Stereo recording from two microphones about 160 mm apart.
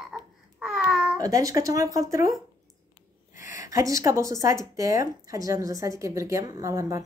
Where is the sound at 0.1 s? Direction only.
Centre (ahead or behind).